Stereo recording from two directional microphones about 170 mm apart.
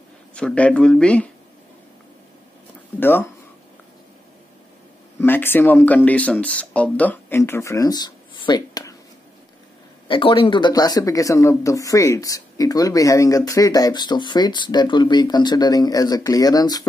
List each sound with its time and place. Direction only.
0.3 s speech: 5° left (ahead or behind)
3.0 s speech: 10° left (ahead or behind)
5.2 s speech: 10° left (ahead or behind)
10.0 s speech: 30° left (ahead or behind)